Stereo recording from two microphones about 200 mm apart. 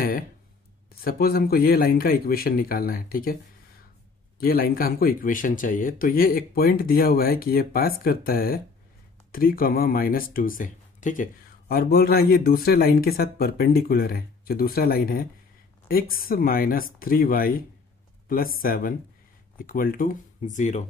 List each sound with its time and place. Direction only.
1.0 s speech: 50° left (ahead or behind)
4.4 s speech: 50° left (ahead or behind)